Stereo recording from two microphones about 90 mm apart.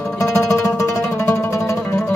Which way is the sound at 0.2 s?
35° left (ahead or behind).